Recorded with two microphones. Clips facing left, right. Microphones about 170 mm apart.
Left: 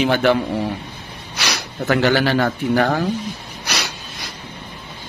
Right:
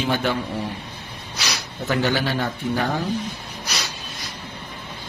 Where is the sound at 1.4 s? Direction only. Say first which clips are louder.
Left 5 dB; 70° left (ahead or behind).